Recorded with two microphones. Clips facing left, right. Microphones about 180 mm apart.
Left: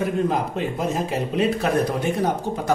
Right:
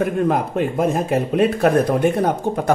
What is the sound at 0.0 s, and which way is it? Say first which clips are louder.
Speech: right 3 dB; 55° right (ahead or behind).